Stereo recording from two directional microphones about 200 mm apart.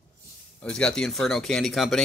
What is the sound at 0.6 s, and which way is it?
Speech, 5° left (ahead or behind).